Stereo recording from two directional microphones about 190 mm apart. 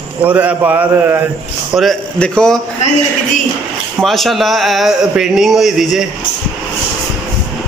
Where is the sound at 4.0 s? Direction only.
Centre (ahead or behind).